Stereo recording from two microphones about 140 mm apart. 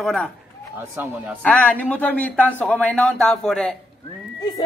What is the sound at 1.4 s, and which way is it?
A man's voice, 10° left (ahead or behind).